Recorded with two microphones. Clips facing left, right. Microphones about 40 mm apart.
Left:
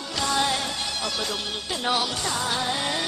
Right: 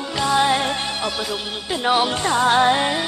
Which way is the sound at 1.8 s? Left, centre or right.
Right.